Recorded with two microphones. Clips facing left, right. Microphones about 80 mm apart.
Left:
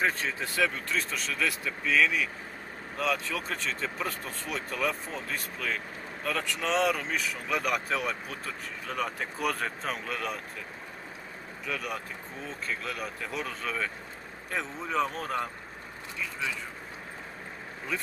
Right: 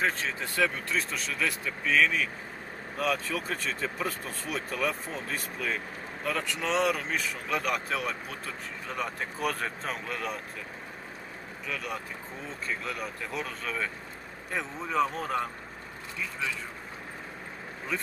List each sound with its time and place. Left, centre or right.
0.6 s speech: centre
11.6 s speech: centre